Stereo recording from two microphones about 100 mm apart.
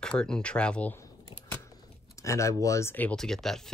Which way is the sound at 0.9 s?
25° left (ahead or behind).